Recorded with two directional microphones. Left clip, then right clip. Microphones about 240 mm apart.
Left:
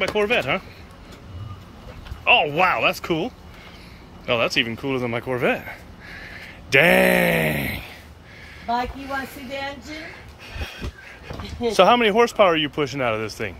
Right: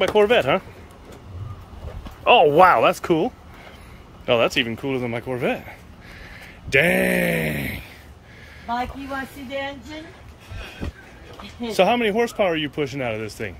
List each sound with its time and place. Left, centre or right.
0.0 s speech: centre
2.2 s speech: right
4.3 s speech: centre
11.7 s speech: centre